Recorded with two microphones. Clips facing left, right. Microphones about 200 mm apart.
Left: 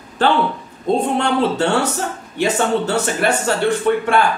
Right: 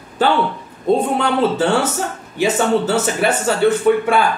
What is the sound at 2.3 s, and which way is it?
Speech, 5° right (ahead or behind).